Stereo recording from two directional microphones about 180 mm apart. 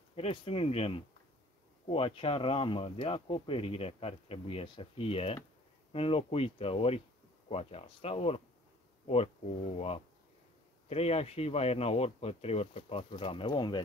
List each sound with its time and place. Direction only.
0.1 s speech: 30° left (ahead or behind)